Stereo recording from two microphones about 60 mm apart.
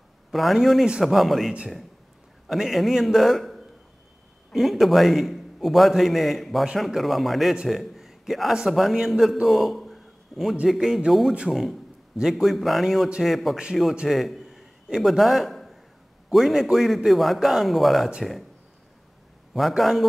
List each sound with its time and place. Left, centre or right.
0.3 s a man's voice: centre
7.6 s a sound: centre
8.5 s a man's voice: centre
14.0 s a sound: centre
16.3 s a man's voice: centre
19.5 s a man's voice: centre